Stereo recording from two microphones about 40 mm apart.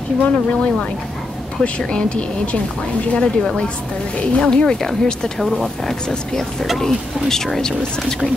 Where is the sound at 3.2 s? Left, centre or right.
Centre.